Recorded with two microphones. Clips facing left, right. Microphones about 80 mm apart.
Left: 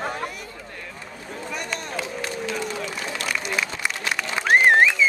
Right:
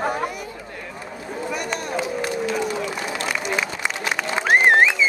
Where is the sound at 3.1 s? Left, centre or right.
Centre.